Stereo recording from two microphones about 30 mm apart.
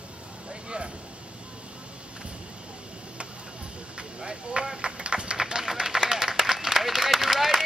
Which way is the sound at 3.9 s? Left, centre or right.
Right.